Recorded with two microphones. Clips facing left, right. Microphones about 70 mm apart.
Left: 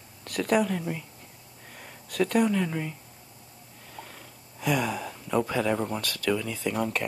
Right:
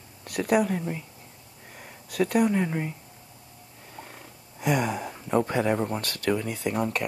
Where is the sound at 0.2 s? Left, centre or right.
Centre.